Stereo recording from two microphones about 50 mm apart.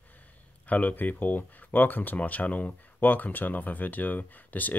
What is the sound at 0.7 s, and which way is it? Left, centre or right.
Speech, left.